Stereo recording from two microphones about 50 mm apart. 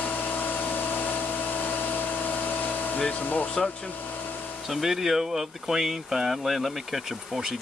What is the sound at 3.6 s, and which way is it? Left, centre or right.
Speech, centre.